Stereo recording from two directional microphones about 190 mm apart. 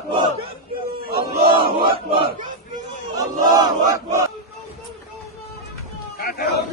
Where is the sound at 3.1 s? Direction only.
20° right (ahead or behind).